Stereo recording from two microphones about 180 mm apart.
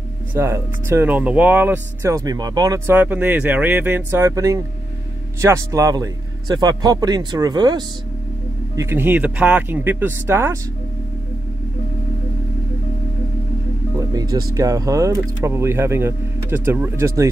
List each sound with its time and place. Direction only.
0.3 s speech: 15° right (ahead or behind)
2.9 s a man's voice: 10° right (ahead or behind)
13.9 s speech: 20° right (ahead or behind)